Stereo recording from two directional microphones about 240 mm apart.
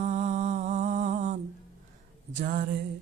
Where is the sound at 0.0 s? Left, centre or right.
Right.